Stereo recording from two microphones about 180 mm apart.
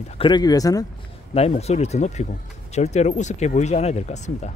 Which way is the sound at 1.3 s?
35° left (ahead or behind).